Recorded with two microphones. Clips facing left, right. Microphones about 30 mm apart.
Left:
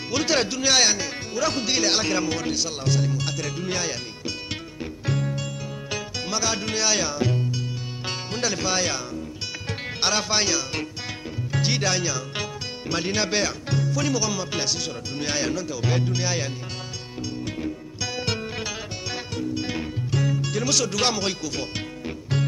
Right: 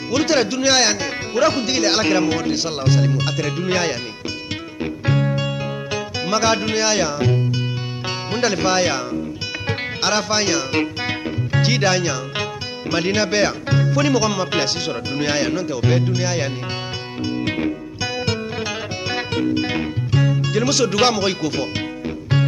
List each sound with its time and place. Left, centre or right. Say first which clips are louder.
0.1 s speech: right 5 dB; centre; by 3.9 s right
5.0 s music: right 7 dB; right
5.9 s music: right 6 dB; centre
6.2 s speech: right 9 dB; right
6.9 s speech: right 5 dB; centre
10.0 s speech: right 4 dB; centre
10.7 s music: right 10 dB; right
12.9 s speech: right 6 dB; right
15.3 s speech: right 6 dB; right
17.5 s music: right 9 dB; right
18.2 s music: right 5 dB; centre
19.5 s music: right 7 dB; right